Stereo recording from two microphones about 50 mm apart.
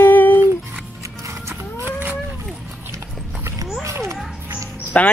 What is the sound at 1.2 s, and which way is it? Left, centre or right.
Music, right.